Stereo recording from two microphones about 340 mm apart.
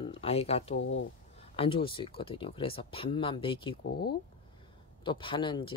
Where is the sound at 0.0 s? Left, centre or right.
Centre.